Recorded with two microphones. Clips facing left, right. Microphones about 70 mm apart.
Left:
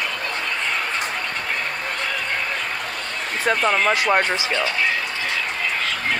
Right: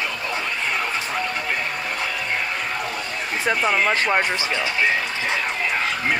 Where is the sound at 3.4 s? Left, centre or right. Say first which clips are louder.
Left 1 dB; centre.